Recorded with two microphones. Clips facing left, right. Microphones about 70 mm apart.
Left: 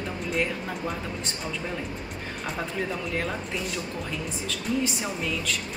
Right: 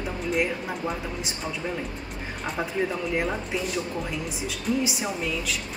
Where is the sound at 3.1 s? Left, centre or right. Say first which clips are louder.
Right 3 dB; centre.